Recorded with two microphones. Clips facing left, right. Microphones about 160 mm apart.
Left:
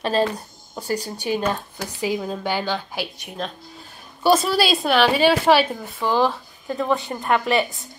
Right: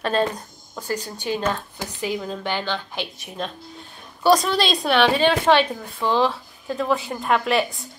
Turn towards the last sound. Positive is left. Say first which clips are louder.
# left 1 dB
turn(degrees=0)  # may be behind; listen again after turning